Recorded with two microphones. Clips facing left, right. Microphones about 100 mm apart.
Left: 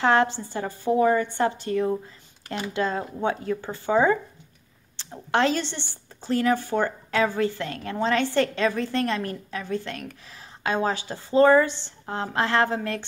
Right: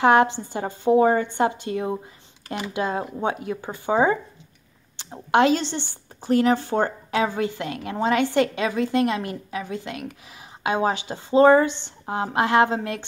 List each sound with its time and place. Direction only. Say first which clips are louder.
0.0 s a woman's voice: right 4 dB; 20° right (ahead or behind)